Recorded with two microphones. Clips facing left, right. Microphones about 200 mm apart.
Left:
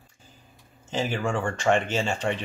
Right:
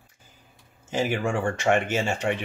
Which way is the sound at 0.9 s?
10° right (ahead or behind).